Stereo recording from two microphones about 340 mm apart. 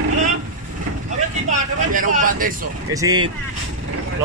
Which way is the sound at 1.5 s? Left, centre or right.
Right.